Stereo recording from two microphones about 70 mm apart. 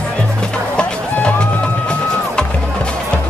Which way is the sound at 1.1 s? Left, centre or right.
Centre.